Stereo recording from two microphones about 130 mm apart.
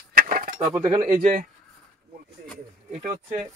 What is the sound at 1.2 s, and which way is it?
Speech, 90° right.